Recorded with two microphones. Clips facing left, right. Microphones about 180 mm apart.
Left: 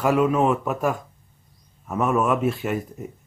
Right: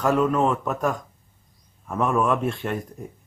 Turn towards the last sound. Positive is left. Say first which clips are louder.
# left 2 dB
turn(degrees=5)  # may be behind; listen again after turning